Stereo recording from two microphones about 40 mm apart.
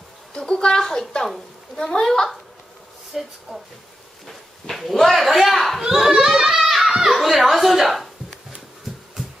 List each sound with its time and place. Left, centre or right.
0.3 s a woman's voice: centre
0.8 s a woman's voice: centre
3.2 s a man's voice: centre
6.1 s a sound: centre